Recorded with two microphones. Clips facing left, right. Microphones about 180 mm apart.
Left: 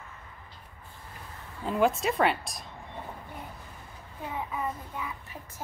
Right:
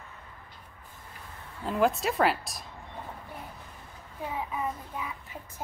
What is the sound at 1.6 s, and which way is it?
A woman's voice, centre (ahead or behind).